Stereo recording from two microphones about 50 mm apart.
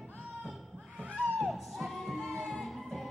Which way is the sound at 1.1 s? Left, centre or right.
Centre.